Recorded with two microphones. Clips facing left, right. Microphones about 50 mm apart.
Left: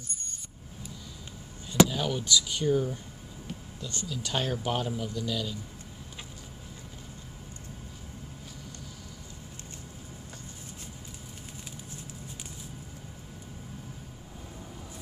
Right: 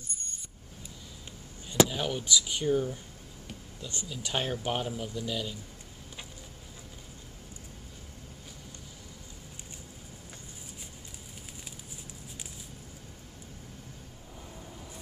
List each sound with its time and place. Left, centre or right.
1.9 s speech: centre